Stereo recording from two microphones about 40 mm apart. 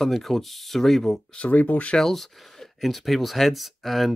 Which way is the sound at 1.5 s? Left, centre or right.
Left.